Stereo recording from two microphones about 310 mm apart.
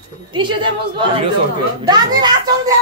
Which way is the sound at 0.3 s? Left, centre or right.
Centre.